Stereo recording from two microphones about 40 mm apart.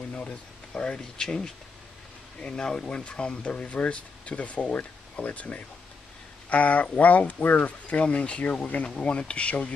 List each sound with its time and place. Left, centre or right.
0.1 s speech: left